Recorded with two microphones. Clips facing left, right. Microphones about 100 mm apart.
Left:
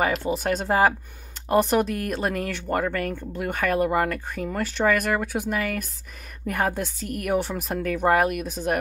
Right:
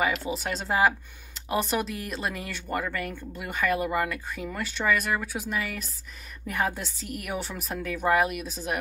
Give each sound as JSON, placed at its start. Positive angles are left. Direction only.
{"t": 0.0, "sound": "a woman's voice", "side_deg": 50}